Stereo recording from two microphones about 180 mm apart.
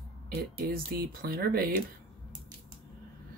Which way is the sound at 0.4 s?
55° right (ahead or behind).